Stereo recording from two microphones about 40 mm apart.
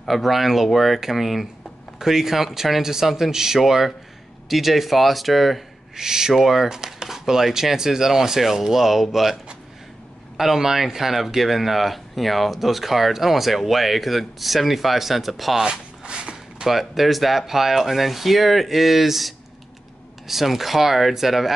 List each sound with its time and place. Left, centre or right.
0.1 s speech: centre
5.9 s speech: centre
15.6 s zipper: right
16.6 s speech: centre